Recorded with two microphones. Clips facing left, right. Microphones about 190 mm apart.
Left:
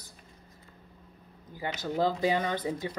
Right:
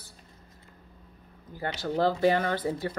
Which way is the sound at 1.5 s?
15° left (ahead or behind).